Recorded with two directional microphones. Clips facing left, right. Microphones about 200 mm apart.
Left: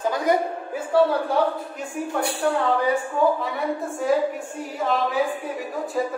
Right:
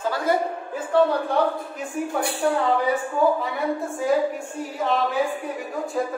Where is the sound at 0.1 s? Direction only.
15° left (ahead or behind).